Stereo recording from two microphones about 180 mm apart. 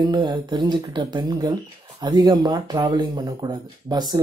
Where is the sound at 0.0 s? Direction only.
25° right (ahead or behind).